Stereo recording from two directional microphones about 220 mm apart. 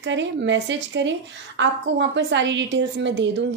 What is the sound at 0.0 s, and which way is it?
A woman's voice, 55° right (ahead or behind).